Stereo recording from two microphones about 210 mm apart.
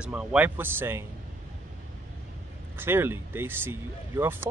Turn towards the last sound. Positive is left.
turn(degrees=-10)  # may be behind; listen again after turning